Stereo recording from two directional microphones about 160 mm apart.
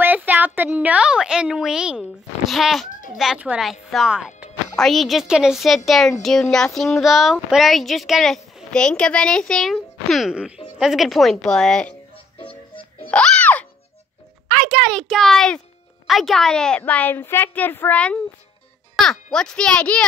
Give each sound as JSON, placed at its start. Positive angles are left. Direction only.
{"t": 0.0, "sound": "a child's voice", "side_deg": -10}
{"t": 2.9, "sound": "a child's voice", "side_deg": 55}
{"t": 3.2, "sound": "a child's voice", "side_deg": -5}
{"t": 12.4, "sound": "music", "side_deg": 35}
{"t": 13.1, "sound": "music", "side_deg": 5}
{"t": 14.5, "sound": "a child's voice", "side_deg": 0}
{"t": 19.0, "sound": "music", "side_deg": 0}
{"t": 19.3, "sound": "a child's voice", "side_deg": 5}